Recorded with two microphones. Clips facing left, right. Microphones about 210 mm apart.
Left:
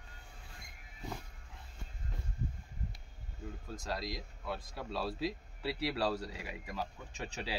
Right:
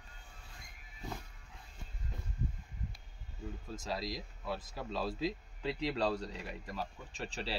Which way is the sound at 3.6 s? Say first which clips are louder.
Even; centre (ahead or behind).